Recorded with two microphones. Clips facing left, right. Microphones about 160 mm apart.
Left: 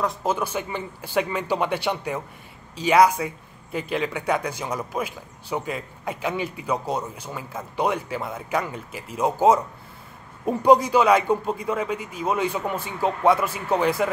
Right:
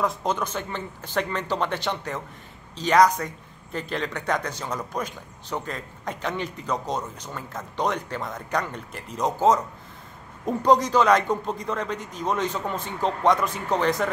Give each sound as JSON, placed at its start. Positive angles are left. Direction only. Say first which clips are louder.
{"t": 0.0, "sound": "a man's voice", "louder": "left 1 dB", "side_deg": 0}